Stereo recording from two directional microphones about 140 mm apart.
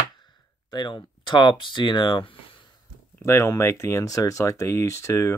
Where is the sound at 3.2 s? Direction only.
20° left (ahead or behind).